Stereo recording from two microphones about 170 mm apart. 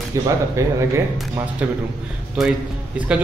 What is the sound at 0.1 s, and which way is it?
Speech, 20° right (ahead or behind).